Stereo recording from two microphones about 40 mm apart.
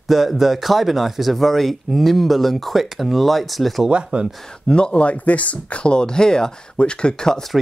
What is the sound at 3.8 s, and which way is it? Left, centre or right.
Speech, right.